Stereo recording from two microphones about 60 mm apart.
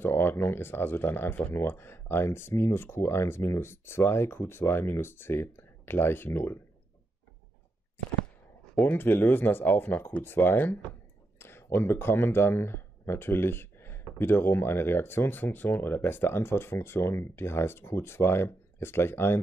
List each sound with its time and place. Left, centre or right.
0.0 s speech: left
8.8 s speech: left